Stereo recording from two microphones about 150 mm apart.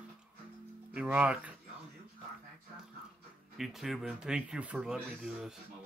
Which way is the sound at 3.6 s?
Centre (ahead or behind).